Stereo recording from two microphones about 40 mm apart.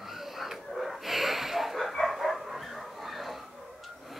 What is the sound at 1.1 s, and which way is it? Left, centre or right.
Snort, centre.